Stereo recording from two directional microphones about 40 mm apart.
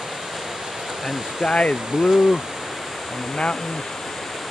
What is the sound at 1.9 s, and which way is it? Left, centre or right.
Speech, centre.